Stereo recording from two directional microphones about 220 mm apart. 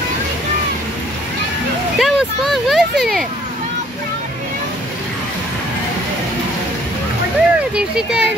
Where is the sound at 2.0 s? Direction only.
Centre (ahead or behind).